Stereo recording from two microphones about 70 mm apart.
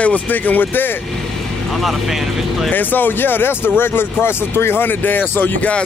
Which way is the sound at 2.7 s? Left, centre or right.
Left.